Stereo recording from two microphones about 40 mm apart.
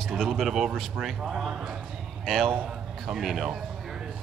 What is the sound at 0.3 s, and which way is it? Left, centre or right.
Speech, centre.